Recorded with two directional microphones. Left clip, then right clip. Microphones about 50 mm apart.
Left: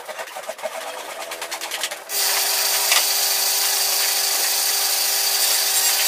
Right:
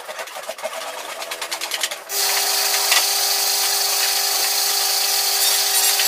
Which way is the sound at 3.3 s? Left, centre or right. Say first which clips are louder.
Right 1 dB; left.